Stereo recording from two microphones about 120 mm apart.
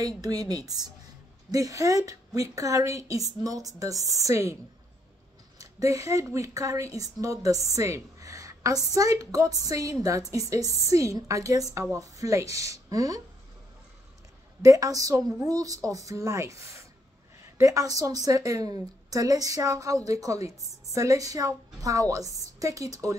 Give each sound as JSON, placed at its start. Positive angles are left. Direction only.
{"t": 0.0, "sound": "a woman's voice", "side_deg": -30}
{"t": 5.6, "sound": "a woman's voice", "side_deg": -30}
{"t": 14.6, "sound": "a woman's voice", "side_deg": -30}